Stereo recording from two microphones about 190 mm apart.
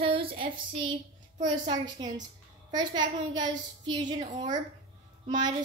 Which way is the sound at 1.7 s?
20° right (ahead or behind).